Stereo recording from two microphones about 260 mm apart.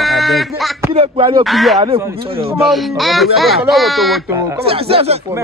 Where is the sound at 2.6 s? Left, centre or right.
Centre.